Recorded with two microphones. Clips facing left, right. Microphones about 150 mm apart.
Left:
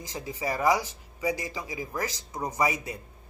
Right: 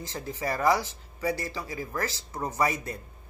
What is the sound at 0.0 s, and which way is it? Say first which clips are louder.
Speech: even; 10° left (ahead or behind).